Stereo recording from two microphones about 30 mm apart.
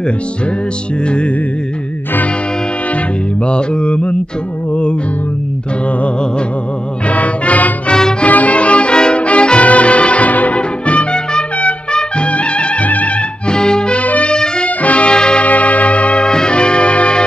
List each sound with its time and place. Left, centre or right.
1.0 s music: left
3.4 s music: left
7.1 s music: left
8.5 s music: left
11.9 s trumpet: left
12.8 s music: left
13.5 s music: left
14.8 s music: left
15.0 s music: left
15.4 s church bell: left
16.2 s music: left